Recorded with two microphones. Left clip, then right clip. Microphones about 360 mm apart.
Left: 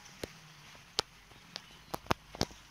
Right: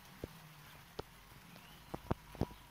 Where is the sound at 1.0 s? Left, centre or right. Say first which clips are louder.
Left 14 dB; left.